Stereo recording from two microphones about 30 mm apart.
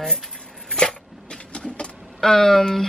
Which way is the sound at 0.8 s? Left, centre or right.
Left.